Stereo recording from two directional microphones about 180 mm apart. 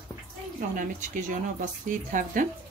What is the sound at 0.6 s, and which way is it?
Speech, 45° right (ahead or behind).